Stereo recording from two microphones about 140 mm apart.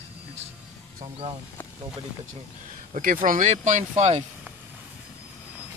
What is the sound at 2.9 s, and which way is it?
Speech, 75° right (ahead or behind).